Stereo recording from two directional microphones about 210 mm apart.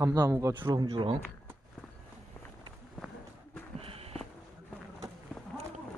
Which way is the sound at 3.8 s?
30° right (ahead or behind).